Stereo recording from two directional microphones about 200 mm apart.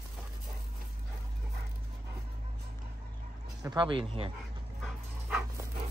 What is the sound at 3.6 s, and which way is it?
Speech, 20° right (ahead or behind).